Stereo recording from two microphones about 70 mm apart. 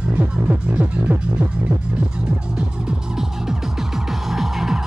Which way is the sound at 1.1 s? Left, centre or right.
Right.